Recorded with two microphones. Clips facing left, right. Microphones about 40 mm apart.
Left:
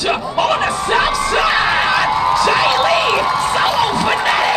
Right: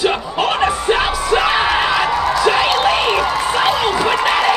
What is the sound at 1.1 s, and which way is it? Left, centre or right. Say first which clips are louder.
Music: left 1 dB; left.